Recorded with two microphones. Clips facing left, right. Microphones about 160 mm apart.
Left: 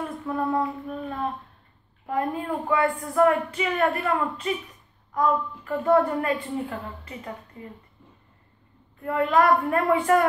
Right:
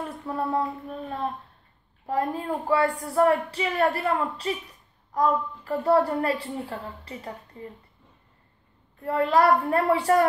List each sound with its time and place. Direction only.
0.3 s child singing: 25° right (ahead or behind)
2.0 s a woman's voice: 35° right (ahead or behind)
9.0 s a woman's voice: 35° right (ahead or behind)